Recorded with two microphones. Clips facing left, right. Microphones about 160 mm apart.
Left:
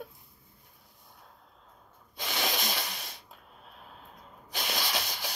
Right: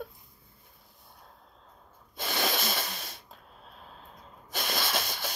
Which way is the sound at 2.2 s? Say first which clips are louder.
Right 2 dB; 50° right (ahead or behind).